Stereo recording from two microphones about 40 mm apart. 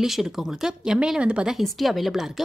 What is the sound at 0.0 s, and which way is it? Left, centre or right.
A woman's voice, centre.